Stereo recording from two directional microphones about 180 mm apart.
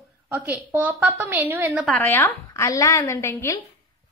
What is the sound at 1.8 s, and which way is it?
A woman's voice, 10° left (ahead or behind).